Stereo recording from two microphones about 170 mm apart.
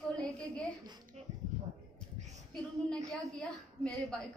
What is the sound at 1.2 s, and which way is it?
Speech, 40° right (ahead or behind).